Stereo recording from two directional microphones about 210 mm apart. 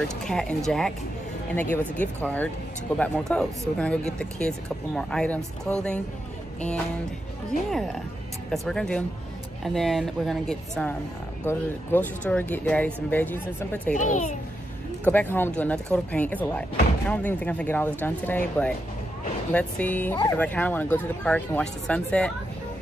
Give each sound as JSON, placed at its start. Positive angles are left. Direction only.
{"t": 0.2, "sound": "speech", "side_deg": 5}
{"t": 7.7, "sound": "speech", "side_deg": 0}
{"t": 13.9, "sound": "a child's voice", "side_deg": 35}
{"t": 15.0, "sound": "speech", "side_deg": 10}